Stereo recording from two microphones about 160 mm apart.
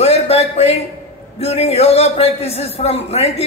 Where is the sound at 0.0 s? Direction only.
40° left (ahead or behind).